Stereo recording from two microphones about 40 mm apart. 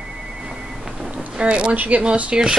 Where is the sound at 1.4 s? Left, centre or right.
Right.